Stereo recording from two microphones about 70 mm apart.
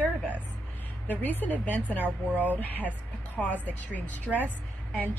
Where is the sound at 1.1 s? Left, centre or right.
Left.